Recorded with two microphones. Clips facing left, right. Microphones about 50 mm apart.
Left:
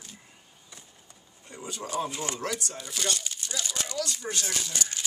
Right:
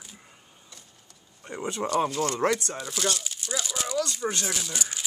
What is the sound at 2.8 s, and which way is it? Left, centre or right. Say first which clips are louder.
Speech: right 3 dB; centre.